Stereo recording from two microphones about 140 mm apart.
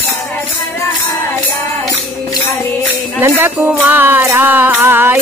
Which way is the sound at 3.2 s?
15° right (ahead or behind).